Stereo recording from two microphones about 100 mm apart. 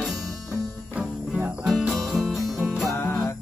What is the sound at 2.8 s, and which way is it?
Music, 20° left (ahead or behind).